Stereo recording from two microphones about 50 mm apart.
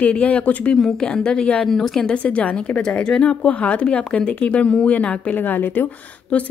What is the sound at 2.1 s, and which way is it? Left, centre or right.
A woman's voice, left.